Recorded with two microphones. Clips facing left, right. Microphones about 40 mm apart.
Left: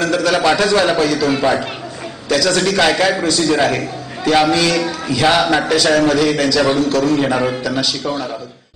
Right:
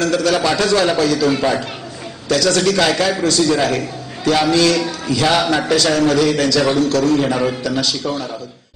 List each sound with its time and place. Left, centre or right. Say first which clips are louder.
0.0 s a man's voice: even; centre
0.4 s a man's voice: left 2 dB; left
5.1 s speech: left 2 dB; left
5.9 s a man's voice: left 2 dB; centre